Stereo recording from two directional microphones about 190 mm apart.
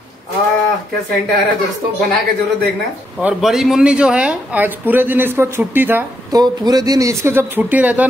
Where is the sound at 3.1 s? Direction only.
Centre (ahead or behind).